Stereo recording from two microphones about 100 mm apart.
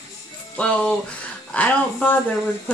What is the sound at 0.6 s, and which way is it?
A woman's voice, 10° left (ahead or behind).